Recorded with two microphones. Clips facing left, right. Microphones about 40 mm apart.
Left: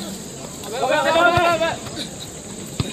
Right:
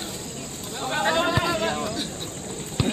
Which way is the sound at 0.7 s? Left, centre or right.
Left.